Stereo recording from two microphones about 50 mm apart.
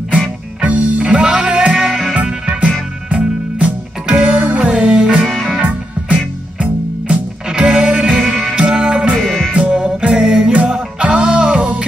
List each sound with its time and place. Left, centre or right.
0.6 s music: right
2.1 s music: right
8.3 s music: centre
8.5 s music: centre
9.1 s music: centre
9.6 s music: right
10.5 s music: right